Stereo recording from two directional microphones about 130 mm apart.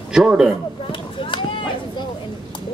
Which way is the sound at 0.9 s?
40° left (ahead or behind).